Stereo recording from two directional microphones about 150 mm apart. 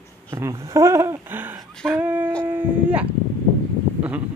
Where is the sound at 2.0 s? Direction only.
10° right (ahead or behind).